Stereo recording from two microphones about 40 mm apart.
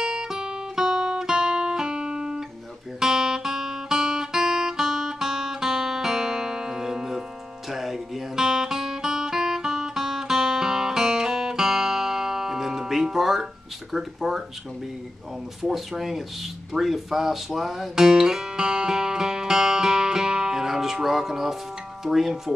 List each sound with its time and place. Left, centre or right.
0.0 s guitar: centre
6.8 s music: centre
13.9 s speech: centre
15.6 s speech: centre
17.9 s music: centre
22.0 s speech: centre